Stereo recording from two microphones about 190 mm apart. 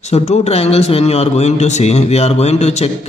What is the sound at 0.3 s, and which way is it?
A man's voice, 35° left (ahead or behind).